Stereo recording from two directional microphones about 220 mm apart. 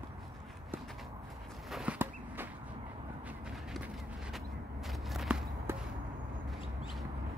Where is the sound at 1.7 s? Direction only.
5° right (ahead or behind).